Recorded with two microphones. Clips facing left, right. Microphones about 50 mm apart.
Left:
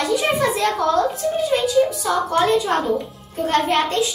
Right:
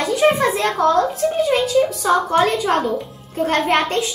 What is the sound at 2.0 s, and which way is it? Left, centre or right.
A woman's voice, right.